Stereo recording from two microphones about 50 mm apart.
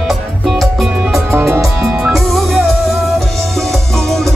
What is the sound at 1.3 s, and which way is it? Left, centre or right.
Music, right.